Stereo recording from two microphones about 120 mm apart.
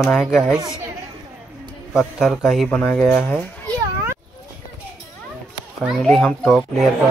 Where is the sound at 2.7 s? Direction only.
15° left (ahead or behind).